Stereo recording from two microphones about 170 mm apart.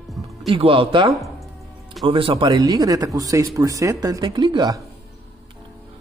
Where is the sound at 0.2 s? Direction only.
Centre (ahead or behind).